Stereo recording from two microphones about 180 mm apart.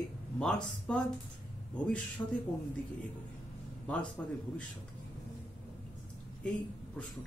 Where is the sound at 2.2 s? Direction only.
10° left (ahead or behind).